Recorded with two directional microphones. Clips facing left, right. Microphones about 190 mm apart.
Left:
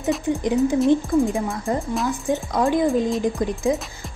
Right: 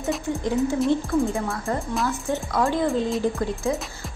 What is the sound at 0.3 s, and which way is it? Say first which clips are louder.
A woman's voice: left 4 dB; 15° left (ahead or behind).